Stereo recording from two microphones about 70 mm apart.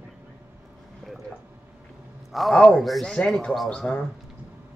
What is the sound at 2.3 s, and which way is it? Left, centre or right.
A man's voice, centre.